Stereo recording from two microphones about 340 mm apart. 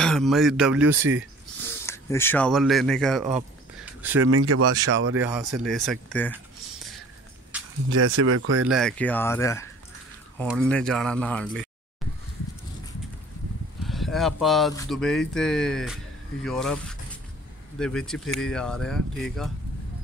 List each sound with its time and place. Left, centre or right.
0.0 s speech: centre
1.9 s speech: centre
4.2 s speech: right
5.2 s speech: centre
7.5 s a sound: centre
7.9 s speech: right
8.6 s speech: centre
13.8 s speech: centre